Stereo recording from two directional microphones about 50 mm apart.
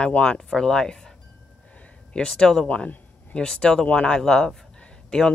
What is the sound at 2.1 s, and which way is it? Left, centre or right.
Speech, centre.